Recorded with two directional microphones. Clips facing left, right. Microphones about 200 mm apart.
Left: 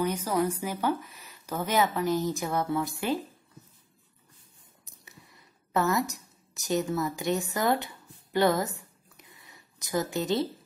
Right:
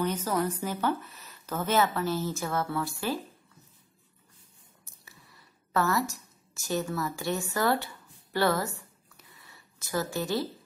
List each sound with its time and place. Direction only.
0.0 s speech: 10° left (ahead or behind)
5.7 s a woman's voice: 20° left (ahead or behind)